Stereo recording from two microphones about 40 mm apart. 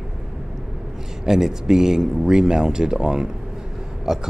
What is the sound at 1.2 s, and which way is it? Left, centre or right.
A man's voice, centre.